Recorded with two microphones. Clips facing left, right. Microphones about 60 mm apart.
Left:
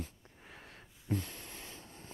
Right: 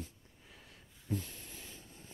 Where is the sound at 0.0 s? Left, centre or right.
Left.